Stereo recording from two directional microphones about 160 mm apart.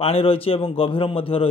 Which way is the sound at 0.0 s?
35° left (ahead or behind).